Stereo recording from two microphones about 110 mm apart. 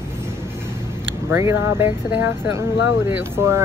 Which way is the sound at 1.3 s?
25° right (ahead or behind).